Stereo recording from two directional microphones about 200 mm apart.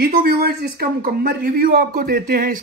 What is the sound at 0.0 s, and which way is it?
Speech, 50° right (ahead or behind).